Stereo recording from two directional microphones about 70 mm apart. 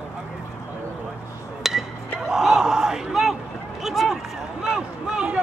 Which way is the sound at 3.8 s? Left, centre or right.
Centre.